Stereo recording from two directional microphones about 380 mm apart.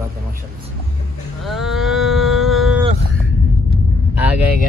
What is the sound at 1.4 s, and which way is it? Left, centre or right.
Livestock, centre.